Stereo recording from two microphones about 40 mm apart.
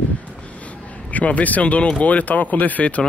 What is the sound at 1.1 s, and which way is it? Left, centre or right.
Speech, left.